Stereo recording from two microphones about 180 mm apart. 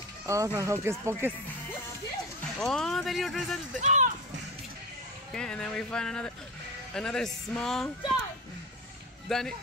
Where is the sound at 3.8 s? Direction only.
40° right (ahead or behind).